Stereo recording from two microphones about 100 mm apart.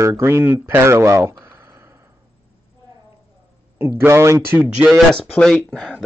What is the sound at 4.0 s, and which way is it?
Speech, 25° right (ahead or behind).